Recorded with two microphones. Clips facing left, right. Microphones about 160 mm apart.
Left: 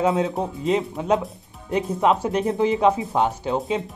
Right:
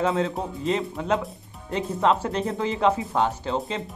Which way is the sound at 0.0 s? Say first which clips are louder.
Left 3 dB; 20° left (ahead or behind).